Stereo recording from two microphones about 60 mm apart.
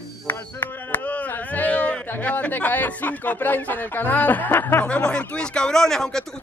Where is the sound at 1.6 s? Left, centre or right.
Left.